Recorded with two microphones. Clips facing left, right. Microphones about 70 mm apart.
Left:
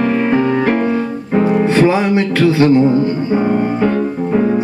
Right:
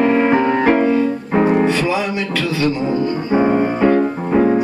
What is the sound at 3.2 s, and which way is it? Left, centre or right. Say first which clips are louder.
Music: even; right.